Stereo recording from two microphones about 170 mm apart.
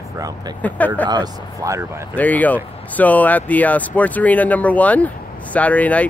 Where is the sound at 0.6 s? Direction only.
10° left (ahead or behind).